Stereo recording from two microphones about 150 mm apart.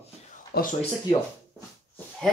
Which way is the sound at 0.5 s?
90° left.